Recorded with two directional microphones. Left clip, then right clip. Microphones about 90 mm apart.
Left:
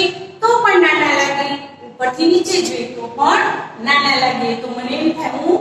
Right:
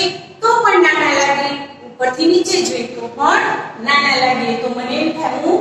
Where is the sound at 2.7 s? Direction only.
35° right (ahead or behind).